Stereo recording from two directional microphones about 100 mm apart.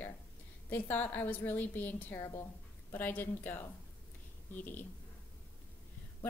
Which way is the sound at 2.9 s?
20° left (ahead or behind).